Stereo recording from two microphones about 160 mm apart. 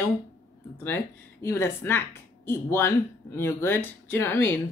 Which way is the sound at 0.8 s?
15° left (ahead or behind).